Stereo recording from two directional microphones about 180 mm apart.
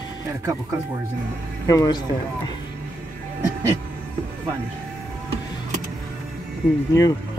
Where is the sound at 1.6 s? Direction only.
20° left (ahead or behind).